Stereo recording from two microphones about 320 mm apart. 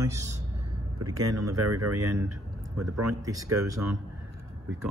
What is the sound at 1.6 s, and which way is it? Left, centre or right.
Speech, right.